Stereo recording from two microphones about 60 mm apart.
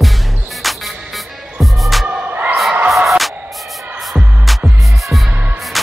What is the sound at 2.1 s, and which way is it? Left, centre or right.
Music, right.